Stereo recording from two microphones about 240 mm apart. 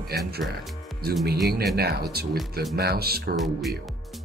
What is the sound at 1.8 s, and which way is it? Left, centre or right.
Speech, right.